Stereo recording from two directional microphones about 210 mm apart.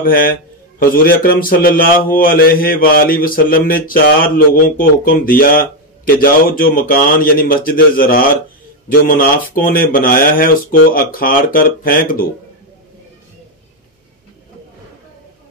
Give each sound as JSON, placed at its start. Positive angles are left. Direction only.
{"t": 0.0, "sound": "speech", "side_deg": 40}